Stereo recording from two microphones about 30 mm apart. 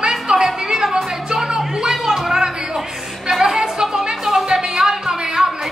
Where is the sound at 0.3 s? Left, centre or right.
Centre.